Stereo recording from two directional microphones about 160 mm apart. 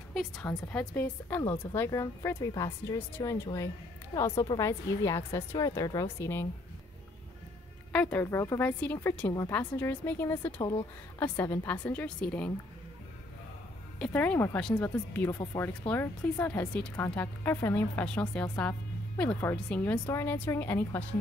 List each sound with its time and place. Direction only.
0.4 s a woman's voice: 15° left (ahead or behind)
7.9 s speech: 10° left (ahead or behind)
13.9 s speech: 5° left (ahead or behind)